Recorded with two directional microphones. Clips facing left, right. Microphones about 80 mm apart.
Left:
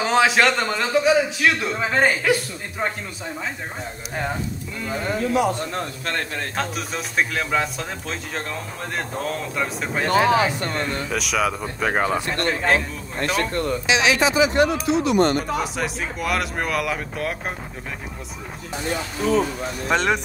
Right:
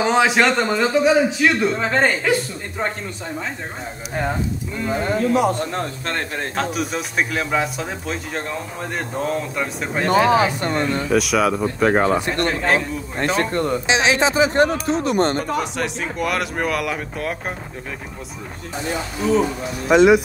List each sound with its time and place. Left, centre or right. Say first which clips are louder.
0.0 s speech: right 1 dB; centre
4.1 s speech: right 3 dB; centre
4.8 s speech: right 4 dB; right
6.5 s speech: right 6 dB; centre
10.2 s speech: right 2 dB; right
11.1 s speech: right 6 dB; centre
13.2 s speech: right 3 dB; right
15.6 s speech: right 1 dB; centre
19.9 s speech: right 9 dB; centre